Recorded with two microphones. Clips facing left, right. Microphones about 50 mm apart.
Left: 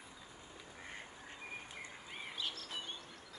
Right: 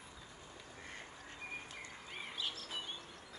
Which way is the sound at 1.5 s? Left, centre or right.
Centre.